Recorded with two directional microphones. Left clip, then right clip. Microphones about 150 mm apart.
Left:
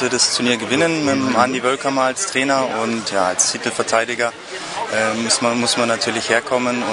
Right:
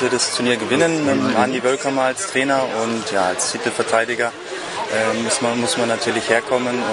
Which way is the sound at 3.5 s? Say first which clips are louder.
Even; centre (ahead or behind).